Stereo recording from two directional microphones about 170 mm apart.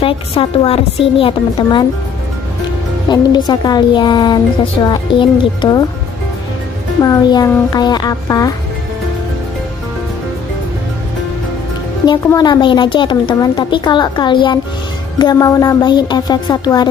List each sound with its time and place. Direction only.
0.0 s a woman's voice: 30° left (ahead or behind)
3.1 s a woman's voice: 25° left (ahead or behind)
7.0 s a woman's voice: 20° left (ahead or behind)
12.3 s a woman's voice: 25° left (ahead or behind)